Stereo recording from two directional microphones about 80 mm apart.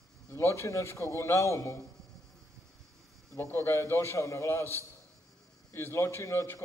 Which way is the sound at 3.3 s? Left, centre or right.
Left.